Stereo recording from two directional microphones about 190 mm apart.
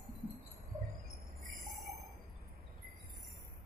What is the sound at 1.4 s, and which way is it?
Bird, 45° right (ahead or behind).